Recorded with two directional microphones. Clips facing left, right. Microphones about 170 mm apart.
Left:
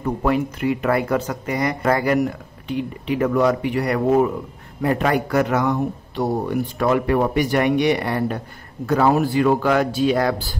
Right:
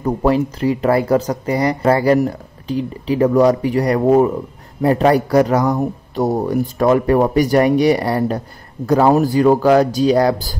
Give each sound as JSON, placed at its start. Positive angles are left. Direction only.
{"t": 0.0, "sound": "speech", "side_deg": -35}